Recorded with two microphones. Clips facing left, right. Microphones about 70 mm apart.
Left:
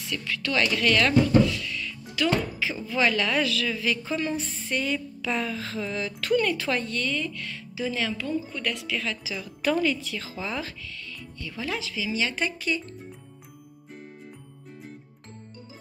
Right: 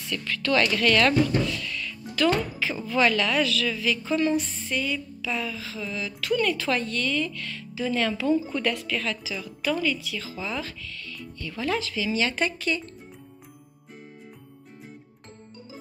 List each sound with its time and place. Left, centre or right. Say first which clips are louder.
0.1 s speech: right 3 dB; centre
1.6 s music: even; centre
3.0 s speech: right 2 dB; left
4.8 s a sound: left 1 dB; left
6.3 s speech: even; left
7.9 s a woman's voice: right 7 dB; centre
8.8 s speech: right 1 dB; centre
9.4 s speech: left 3 dB; left
11.3 s speech: right 4 dB; centre